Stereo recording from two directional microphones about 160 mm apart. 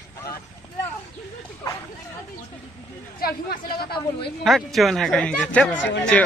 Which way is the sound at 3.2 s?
70° left (ahead or behind).